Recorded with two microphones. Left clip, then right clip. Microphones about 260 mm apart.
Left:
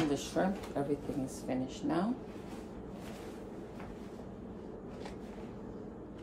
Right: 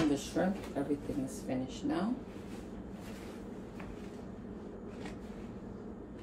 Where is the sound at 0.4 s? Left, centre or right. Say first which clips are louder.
Left 1 dB; centre.